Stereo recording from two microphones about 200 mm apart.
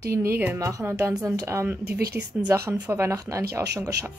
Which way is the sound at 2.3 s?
10° right (ahead or behind).